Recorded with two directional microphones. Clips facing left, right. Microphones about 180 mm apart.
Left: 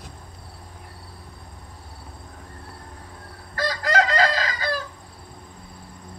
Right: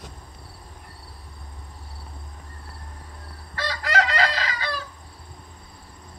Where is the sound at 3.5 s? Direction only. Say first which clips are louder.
Left 3 dB; 40° left (ahead or behind).